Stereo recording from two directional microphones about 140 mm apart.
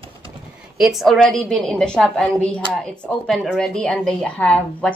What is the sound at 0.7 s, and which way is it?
Speech, centre (ahead or behind).